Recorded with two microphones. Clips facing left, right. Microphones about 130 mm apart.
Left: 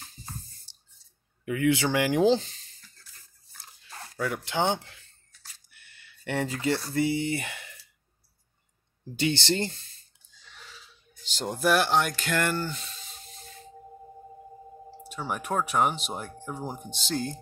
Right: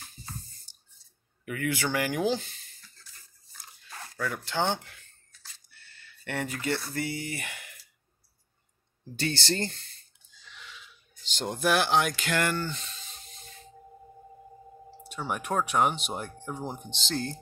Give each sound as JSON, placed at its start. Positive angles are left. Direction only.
{"t": 1.4, "sound": "speech", "side_deg": 20}
{"t": 4.2, "sound": "speech", "side_deg": 20}
{"t": 9.2, "sound": "speech", "side_deg": 20}
{"t": 9.8, "sound": "a sound", "side_deg": -65}
{"t": 10.5, "sound": "wheeze", "side_deg": 40}
{"t": 11.3, "sound": "speech", "side_deg": 5}
{"t": 15.0, "sound": "speech", "side_deg": 0}